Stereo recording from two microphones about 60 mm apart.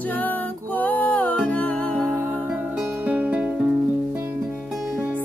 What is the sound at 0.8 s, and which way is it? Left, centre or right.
Music, left.